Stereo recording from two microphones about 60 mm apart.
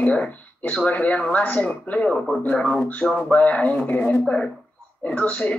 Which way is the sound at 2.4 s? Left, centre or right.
Left.